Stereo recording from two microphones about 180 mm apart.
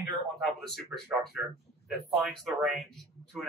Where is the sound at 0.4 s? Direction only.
Centre (ahead or behind).